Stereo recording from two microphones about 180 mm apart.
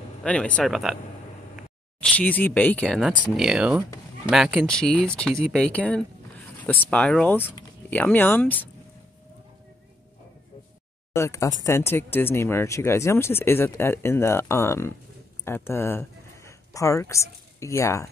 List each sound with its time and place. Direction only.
0.2 s speech: 5° left (ahead or behind)
2.0 s speech: 5° left (ahead or behind)
11.1 s speech: 15° left (ahead or behind)